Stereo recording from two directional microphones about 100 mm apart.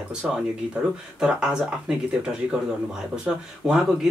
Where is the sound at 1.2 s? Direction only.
10° right (ahead or behind).